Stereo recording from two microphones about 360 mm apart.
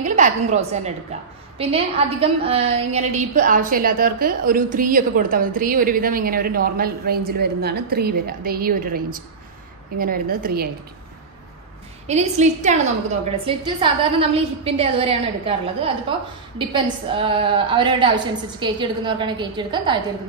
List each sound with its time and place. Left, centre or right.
0.0 s a woman's voice: centre
12.1 s a woman's voice: centre